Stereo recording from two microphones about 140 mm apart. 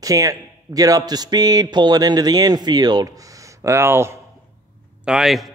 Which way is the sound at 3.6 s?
20° right (ahead or behind).